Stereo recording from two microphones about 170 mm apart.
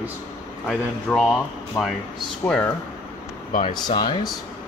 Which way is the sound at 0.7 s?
5° left (ahead or behind).